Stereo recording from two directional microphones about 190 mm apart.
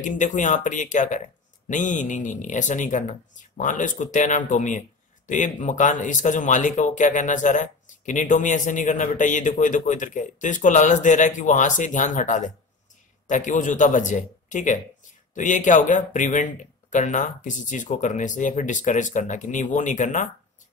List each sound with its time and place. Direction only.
0.0 s speech: 40° left (ahead or behind)